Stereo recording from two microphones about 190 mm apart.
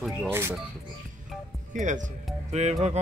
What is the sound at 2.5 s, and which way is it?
Music, 35° right (ahead or behind).